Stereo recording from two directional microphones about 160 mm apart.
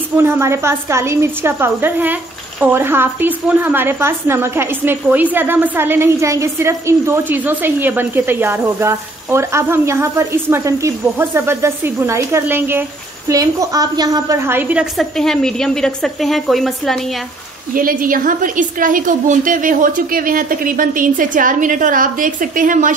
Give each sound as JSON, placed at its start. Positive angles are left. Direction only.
{"t": 0.2, "sound": "a woman's voice", "side_deg": -15}
{"t": 17.7, "sound": "a woman's voice", "side_deg": -60}